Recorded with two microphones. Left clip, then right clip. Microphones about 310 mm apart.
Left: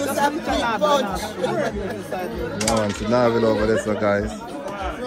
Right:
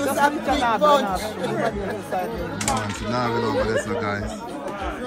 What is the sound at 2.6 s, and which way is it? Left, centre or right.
Speech, centre.